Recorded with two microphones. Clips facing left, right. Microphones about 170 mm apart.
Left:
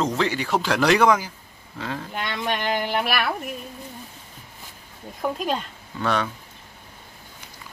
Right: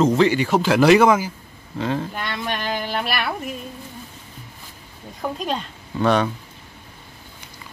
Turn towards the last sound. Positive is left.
turn(degrees=-20)  # may be behind; listen again after turning